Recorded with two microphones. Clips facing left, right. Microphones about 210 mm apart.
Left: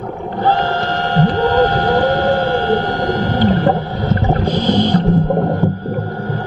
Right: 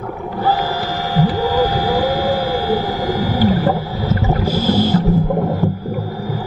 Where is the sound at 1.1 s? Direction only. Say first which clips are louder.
Left 2 dB; 5° right (ahead or behind).